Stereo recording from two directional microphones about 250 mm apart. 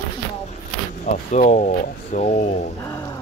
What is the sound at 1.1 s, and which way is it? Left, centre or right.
Speech, left.